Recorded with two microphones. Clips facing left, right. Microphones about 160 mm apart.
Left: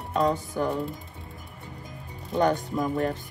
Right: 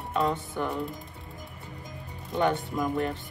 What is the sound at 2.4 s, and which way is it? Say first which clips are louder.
Music: left 2 dB; 40° left (ahead or behind).